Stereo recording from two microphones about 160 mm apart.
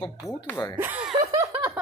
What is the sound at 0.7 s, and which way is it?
Speech, 10° right (ahead or behind).